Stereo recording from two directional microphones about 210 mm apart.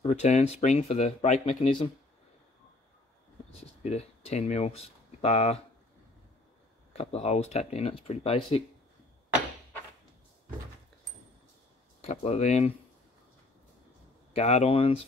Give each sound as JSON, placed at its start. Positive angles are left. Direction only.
{"t": 0.0, "sound": "speech", "side_deg": 30}
{"t": 3.8, "sound": "speech", "side_deg": 30}
{"t": 6.9, "sound": "speech", "side_deg": 30}
{"t": 12.0, "sound": "speech", "side_deg": 30}
{"t": 14.3, "sound": "speech", "side_deg": 30}